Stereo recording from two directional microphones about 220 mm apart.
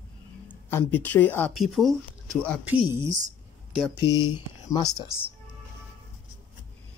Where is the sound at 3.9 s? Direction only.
15° left (ahead or behind).